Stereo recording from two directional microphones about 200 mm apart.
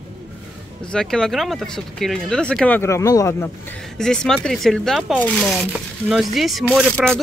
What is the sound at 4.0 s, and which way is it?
Speech, 5° left (ahead or behind).